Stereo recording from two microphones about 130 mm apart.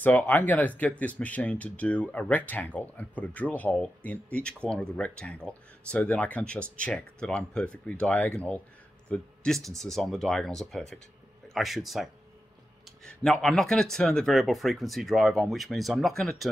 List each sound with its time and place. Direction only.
0.0 s speech: 10° left (ahead or behind)